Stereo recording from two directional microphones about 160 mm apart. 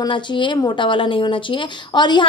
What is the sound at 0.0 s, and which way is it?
Speech, 30° left (ahead or behind).